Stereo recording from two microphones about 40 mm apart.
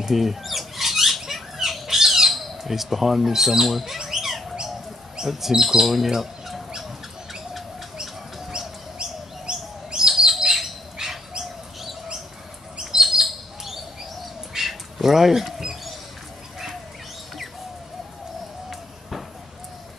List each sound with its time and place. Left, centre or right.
0.1 s rodents: centre
5.2 s speech: centre
6.0 s a sound: centre
8.5 s bird: right
9.5 s chirp: centre
10.4 s bird: centre
12.9 s bird: centre
14.5 s a sound: centre
18.7 s a sound: centre